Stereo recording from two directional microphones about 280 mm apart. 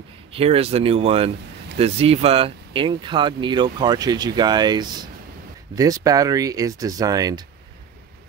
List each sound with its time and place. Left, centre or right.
0.3 s speech: centre